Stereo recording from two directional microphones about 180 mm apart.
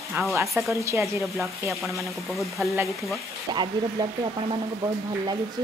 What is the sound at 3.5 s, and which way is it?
Speech, 25° right (ahead or behind).